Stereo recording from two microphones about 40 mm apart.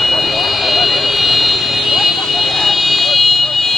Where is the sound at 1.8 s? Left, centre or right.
Centre.